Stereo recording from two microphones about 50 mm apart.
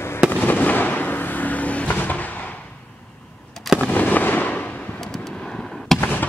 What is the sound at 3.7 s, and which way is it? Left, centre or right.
Fireworks, left.